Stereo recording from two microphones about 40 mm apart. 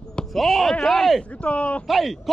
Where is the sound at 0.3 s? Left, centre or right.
Centre.